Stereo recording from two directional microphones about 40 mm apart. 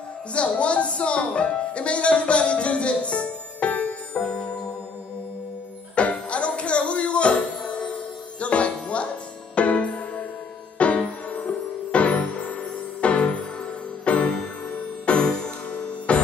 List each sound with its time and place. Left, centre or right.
0.3 s speech: left
5.9 s music: left